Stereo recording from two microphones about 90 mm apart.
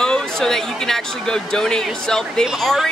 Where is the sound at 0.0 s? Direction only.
5° left (ahead or behind).